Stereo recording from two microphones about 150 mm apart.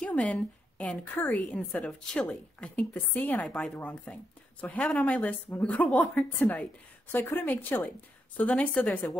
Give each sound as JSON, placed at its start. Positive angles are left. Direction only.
{"t": 0.0, "sound": "speech", "side_deg": 5}